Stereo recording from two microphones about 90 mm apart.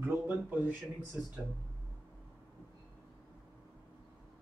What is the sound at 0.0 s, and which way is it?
Speech, 20° right (ahead or behind).